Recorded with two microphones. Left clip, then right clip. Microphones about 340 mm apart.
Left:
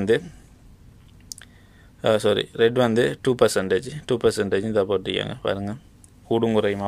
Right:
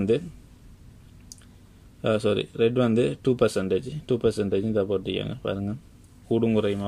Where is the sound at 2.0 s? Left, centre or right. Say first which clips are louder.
Left 4 dB; centre.